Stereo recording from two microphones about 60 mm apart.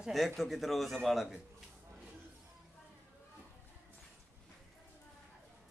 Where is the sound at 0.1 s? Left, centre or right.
Centre.